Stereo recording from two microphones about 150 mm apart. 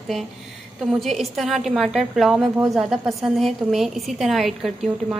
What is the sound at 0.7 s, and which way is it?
A woman's voice, centre (ahead or behind).